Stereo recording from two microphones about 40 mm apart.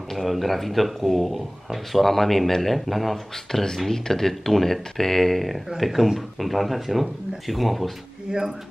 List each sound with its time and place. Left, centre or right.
0.1 s speech: centre
8.3 s speech: right